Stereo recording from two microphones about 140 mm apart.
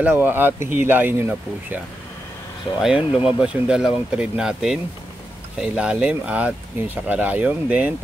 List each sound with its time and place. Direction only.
0.0 s speech: 15° right (ahead or behind)
3.0 s speech: 40° left (ahead or behind)
3.3 s speech: 5° right (ahead or behind)